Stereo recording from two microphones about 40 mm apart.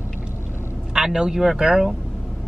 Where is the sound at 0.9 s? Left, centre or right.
Centre.